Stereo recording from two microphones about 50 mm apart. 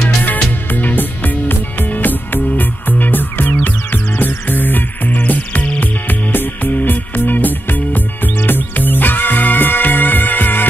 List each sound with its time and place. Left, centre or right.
0.7 s music: left